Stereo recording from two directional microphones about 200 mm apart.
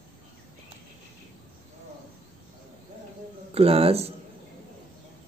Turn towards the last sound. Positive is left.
turn(degrees=-30)  # may be behind; listen again after turning